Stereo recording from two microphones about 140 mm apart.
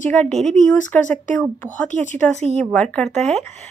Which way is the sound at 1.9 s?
60° left (ahead or behind).